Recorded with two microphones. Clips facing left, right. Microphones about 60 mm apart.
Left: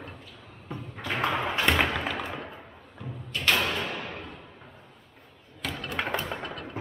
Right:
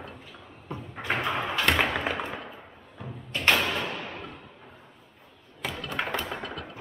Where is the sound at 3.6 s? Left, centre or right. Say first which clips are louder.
Even; centre.